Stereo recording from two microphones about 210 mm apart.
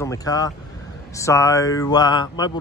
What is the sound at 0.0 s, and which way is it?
Speech, 15° left (ahead or behind).